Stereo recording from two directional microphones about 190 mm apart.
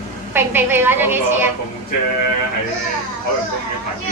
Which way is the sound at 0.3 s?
10° right (ahead or behind).